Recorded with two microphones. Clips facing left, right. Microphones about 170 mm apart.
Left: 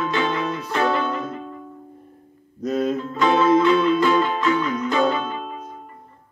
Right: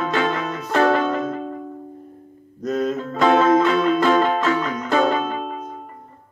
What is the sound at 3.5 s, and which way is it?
Music, 45° right (ahead or behind).